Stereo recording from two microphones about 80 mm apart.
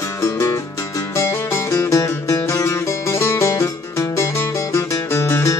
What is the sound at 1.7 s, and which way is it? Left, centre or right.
Music, left.